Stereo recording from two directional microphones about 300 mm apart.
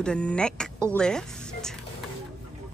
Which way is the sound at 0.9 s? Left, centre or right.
Centre.